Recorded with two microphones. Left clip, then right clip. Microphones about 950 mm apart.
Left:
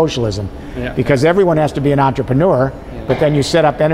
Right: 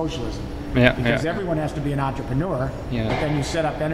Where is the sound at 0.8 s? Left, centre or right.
Right.